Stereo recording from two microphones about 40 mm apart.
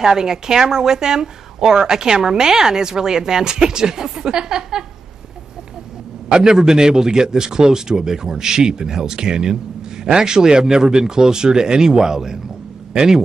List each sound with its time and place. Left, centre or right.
0.0 s a woman's voice: centre
6.5 s a woman's voice: centre